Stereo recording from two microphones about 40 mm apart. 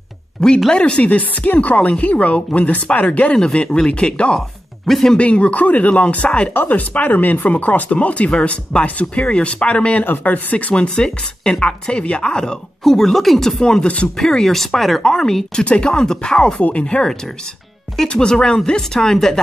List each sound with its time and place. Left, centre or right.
0.7 s speech: left
1.0 s speech: left
3.3 s speech: centre
4.8 s speech: centre
5.1 s speech: left
6.5 s speech: left
10.0 s speech: left
10.7 s speech: left
12.8 s speech: centre
15.6 s speech: left
16.5 s speech: left
16.8 s speech: left